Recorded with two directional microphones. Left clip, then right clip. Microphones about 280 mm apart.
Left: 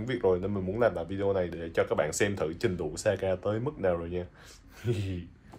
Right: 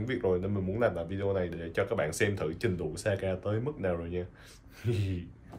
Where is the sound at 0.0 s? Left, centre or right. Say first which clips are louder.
Left 3 dB; centre.